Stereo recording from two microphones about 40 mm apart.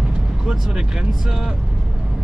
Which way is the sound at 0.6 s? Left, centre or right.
Centre.